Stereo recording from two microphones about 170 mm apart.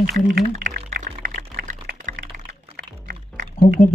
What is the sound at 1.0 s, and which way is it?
Music, 50° right (ahead or behind).